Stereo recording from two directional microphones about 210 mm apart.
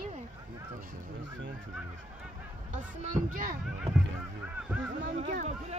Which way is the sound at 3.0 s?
40° right (ahead or behind).